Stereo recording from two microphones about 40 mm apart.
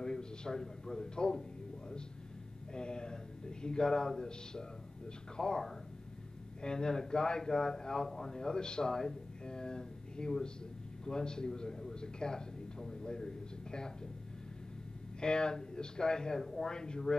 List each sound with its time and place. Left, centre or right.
0.0 s a man's voice: centre
2.7 s speech: left
5.4 s a man's voice: centre
6.6 s a man's voice: centre
15.1 s a man's voice: left